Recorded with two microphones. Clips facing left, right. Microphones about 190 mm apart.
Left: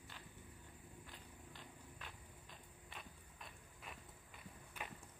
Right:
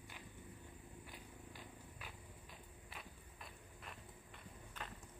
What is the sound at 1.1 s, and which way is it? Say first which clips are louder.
Walk: right 3 dB; 10° right (ahead or behind).